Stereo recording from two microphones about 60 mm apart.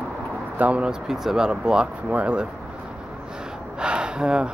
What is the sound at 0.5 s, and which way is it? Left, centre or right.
Speech, right.